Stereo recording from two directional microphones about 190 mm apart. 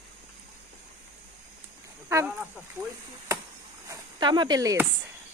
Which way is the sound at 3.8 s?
25° right (ahead or behind).